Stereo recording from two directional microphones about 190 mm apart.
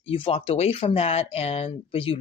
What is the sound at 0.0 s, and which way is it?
Speech, 30° left (ahead or behind).